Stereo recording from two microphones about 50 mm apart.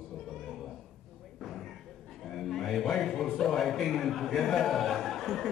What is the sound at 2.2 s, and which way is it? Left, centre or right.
A man's voice, centre.